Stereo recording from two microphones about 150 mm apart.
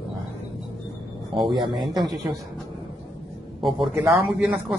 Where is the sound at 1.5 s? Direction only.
30° right (ahead or behind).